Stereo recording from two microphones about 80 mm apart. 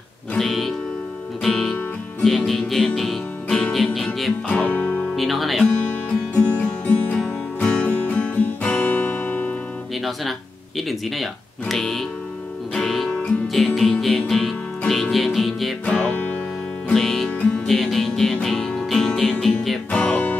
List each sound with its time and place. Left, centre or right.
0.4 s music: centre
4.5 s music: centre
5.1 s music: centre
6.0 s music: centre
10.8 s speech: centre
12.7 s music: centre
15.8 s music: centre